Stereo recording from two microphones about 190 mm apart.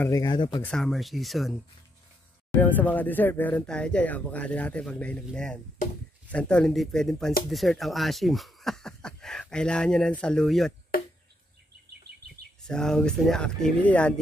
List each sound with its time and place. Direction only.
0.0 s speech: 20° left (ahead or behind)
0.6 s speech: 5° left (ahead or behind)
2.6 s speech: 10° left (ahead or behind)
12.6 s speech: 5° left (ahead or behind)